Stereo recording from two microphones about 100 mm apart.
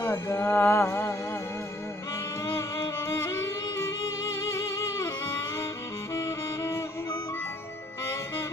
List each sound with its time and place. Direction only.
0.0 s music: 25° left (ahead or behind)
2.4 s music: 30° left (ahead or behind)